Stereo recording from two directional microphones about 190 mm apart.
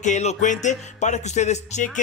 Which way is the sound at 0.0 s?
35° left (ahead or behind).